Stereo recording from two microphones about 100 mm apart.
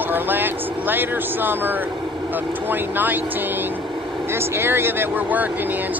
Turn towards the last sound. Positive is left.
turn(degrees=-20)  # may be behind; listen again after turning